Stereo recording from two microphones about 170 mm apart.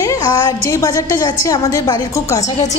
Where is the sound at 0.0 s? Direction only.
20° left (ahead or behind).